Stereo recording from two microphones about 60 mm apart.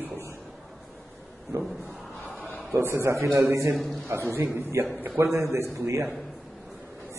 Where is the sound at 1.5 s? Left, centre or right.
Right.